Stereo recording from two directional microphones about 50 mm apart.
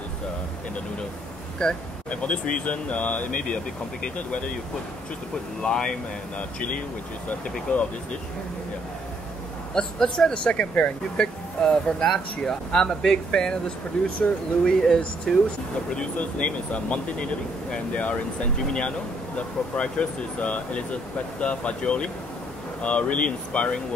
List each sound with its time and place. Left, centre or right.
1.6 s speech: centre
5.6 s speech: centre
7.7 s speech: left
9.8 s speech: centre
14.6 s speech: centre
16.2 s speech: left